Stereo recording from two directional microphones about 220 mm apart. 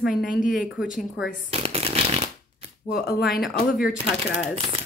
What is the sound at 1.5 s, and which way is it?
Speech, 25° right (ahead or behind).